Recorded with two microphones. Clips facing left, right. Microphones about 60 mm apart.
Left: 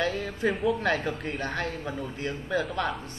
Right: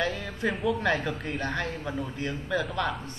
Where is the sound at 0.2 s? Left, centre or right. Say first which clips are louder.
Left 2 dB; centre.